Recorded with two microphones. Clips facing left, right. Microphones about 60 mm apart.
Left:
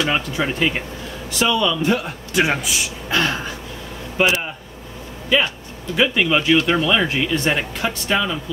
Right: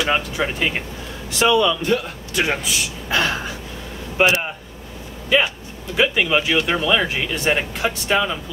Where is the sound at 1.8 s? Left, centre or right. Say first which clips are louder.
Left 1 dB; centre.